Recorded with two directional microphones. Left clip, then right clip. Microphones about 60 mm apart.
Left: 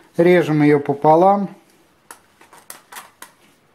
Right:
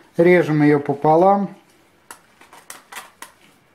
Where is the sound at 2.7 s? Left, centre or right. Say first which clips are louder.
Right 1 dB; centre.